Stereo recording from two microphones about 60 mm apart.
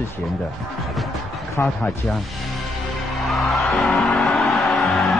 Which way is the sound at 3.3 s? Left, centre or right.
Centre.